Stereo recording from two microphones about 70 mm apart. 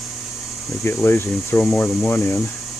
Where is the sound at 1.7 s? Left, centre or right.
Centre.